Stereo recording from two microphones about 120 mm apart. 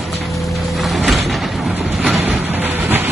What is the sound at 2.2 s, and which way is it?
Train, 15° right (ahead or behind).